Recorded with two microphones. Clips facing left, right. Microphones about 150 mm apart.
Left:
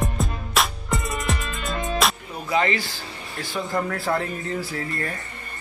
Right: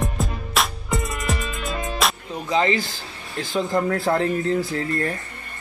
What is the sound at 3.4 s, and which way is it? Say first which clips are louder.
Speech: right 4 dB; 20° right (ahead or behind).